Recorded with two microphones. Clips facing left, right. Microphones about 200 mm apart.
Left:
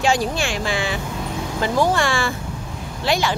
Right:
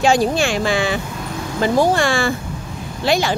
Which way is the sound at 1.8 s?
40° right (ahead or behind).